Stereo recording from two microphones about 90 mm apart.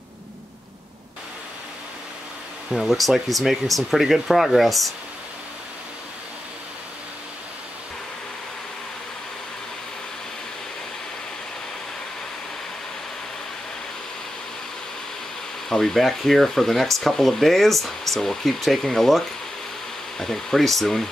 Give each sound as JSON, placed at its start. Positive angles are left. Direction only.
{"t": 2.7, "sound": "speech", "side_deg": 0}
{"t": 15.7, "sound": "speech", "side_deg": 5}